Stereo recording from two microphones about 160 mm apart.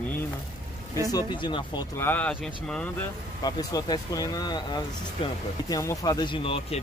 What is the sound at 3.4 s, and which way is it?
Speech, 25° left (ahead or behind).